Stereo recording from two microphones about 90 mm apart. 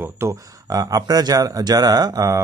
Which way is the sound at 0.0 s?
30° right (ahead or behind).